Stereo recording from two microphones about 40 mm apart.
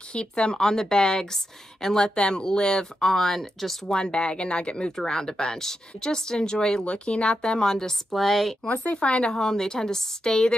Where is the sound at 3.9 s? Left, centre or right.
Centre.